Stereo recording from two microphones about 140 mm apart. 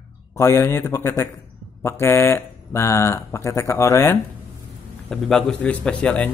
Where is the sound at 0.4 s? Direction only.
20° left (ahead or behind).